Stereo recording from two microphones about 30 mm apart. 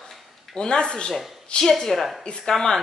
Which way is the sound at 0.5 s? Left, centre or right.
Left.